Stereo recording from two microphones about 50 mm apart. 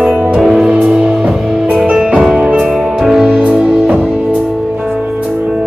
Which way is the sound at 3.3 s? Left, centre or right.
Right.